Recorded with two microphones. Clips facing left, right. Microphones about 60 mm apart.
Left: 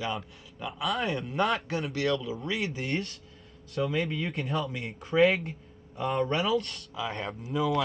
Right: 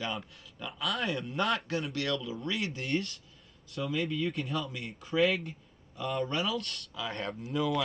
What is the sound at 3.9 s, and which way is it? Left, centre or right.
Speech, left.